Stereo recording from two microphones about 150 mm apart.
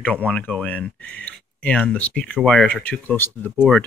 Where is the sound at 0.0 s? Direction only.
10° left (ahead or behind).